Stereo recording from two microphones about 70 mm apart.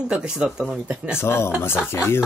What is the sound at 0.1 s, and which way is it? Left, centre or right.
Speech, centre.